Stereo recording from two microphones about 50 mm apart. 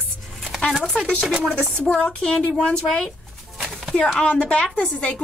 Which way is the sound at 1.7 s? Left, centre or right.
Centre.